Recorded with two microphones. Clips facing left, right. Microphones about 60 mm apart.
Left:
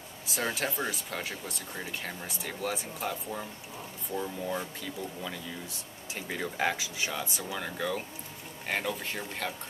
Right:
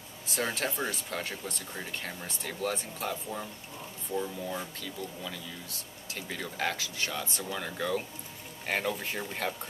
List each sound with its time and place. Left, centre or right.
0.3 s speech: centre